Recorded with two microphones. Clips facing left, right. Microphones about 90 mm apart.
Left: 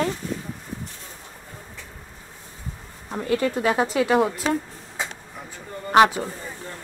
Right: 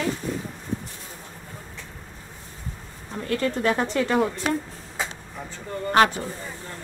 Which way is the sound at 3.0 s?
20° left (ahead or behind).